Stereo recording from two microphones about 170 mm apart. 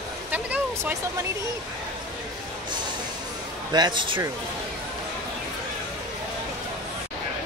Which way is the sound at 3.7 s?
25° right (ahead or behind).